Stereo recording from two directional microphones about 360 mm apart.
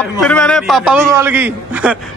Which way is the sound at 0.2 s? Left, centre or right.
Centre.